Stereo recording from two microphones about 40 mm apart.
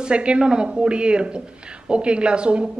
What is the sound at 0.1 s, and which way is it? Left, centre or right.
Speech, right.